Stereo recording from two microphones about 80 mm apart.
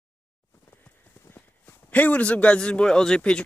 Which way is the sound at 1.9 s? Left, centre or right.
Centre.